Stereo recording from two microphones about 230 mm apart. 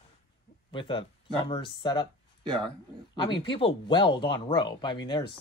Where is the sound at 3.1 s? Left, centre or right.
Left.